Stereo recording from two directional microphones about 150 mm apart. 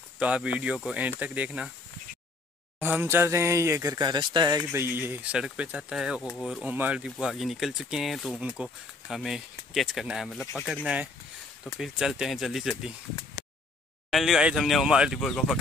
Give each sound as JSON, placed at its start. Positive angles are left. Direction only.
{"t": 0.2, "sound": "speech", "side_deg": -5}
{"t": 2.8, "sound": "speech", "side_deg": -15}
{"t": 11.8, "sound": "speech", "side_deg": -5}
{"t": 14.1, "sound": "speech", "side_deg": -5}